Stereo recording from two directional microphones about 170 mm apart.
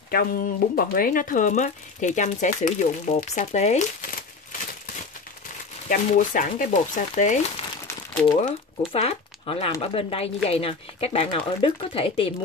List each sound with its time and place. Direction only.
0.1 s speech: 60° left (ahead or behind); by 3.8 s 40° left (ahead or behind)
5.9 s speech: 50° left (ahead or behind); by 12.3 s 35° left (ahead or behind)